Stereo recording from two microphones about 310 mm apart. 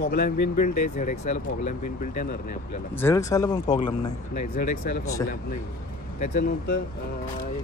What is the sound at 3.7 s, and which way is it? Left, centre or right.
Speech, left.